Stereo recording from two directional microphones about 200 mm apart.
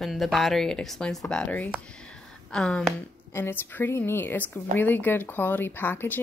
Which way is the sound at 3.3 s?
10° left (ahead or behind).